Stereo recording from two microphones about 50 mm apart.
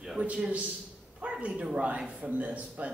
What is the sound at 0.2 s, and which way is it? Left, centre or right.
A man's voice, right.